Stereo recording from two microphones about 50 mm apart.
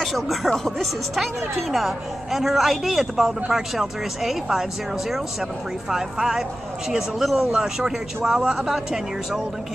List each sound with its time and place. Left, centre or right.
0.0 s a woman's voice: centre
5.9 s a man's voice: centre